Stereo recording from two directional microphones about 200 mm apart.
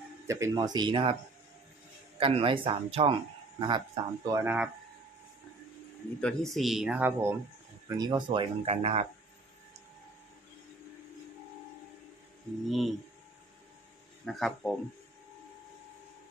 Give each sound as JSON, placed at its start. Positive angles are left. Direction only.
{"t": 0.3, "sound": "speech", "side_deg": -15}
{"t": 2.1, "sound": "speech", "side_deg": -30}
{"t": 6.2, "sound": "speech", "side_deg": 0}
{"t": 8.0, "sound": "speech", "side_deg": -25}
{"t": 12.6, "sound": "speech", "side_deg": 0}
{"t": 14.2, "sound": "speech", "side_deg": 0}